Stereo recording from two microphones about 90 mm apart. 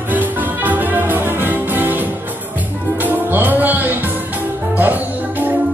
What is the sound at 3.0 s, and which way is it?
Music, 20° right (ahead or behind).